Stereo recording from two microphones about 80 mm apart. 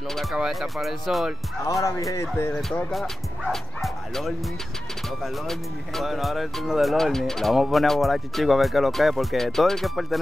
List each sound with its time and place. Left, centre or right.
0.1 s speech: centre
1.7 s speech: left
2.9 s bow-wow: centre
5.2 s speech: centre